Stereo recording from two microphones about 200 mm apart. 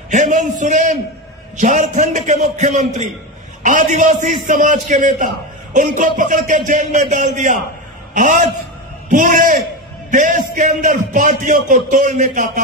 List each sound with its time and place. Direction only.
0.1 s a man's voice: 40° right (ahead or behind)